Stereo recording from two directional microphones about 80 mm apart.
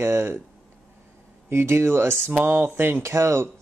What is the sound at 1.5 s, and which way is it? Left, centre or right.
Speech, right.